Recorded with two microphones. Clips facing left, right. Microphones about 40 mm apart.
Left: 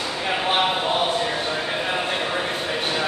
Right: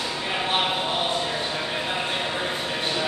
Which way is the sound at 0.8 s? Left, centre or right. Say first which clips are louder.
Left 3 dB; left.